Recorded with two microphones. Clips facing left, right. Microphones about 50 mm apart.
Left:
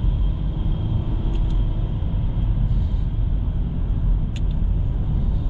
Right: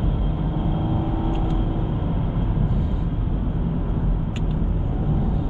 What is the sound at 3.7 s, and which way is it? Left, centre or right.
Vehicle, right.